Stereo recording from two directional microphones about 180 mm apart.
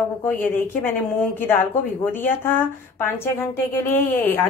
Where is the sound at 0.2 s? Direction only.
10° left (ahead or behind).